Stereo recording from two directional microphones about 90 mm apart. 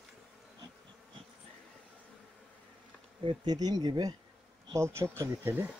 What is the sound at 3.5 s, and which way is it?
Speech, 50° right (ahead or behind).